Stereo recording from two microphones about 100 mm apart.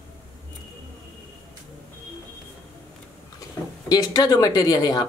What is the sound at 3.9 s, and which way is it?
Speech, 40° left (ahead or behind).